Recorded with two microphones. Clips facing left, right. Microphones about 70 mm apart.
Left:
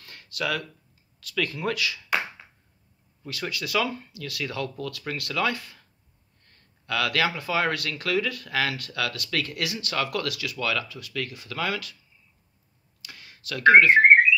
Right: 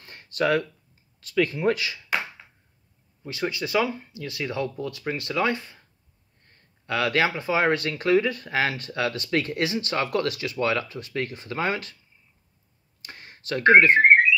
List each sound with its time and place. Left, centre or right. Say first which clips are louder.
0.0 s a sound: right 6 dB; right
1.2 s speech: right 6 dB; right
3.3 s speech: right 4 dB; right
13.0 s speech: right 2 dB; right